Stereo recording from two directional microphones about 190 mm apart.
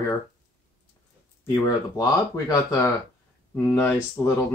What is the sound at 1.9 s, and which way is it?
Speech, 20° left (ahead or behind).